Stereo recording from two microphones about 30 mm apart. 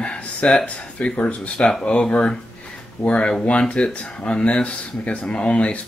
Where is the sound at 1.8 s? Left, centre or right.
Left.